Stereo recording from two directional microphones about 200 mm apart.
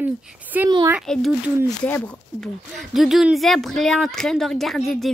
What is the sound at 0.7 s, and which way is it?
Speech, 20° right (ahead or behind).